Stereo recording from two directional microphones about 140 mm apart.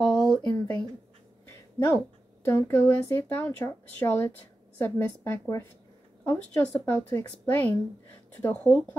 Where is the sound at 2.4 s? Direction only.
15° left (ahead or behind).